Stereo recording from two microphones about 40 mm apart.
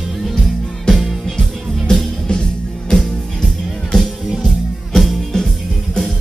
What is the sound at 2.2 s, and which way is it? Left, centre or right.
Music, centre.